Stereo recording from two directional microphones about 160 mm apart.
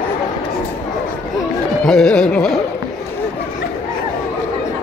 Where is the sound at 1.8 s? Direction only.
Centre (ahead or behind).